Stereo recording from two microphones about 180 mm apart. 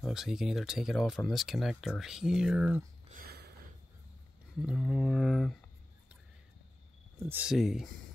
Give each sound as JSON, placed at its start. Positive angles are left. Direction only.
{"t": 0.0, "sound": "speech", "side_deg": 0}
{"t": 3.2, "sound": "a sound", "side_deg": -60}
{"t": 4.6, "sound": "speech", "side_deg": 0}
{"t": 7.2, "sound": "speech", "side_deg": -10}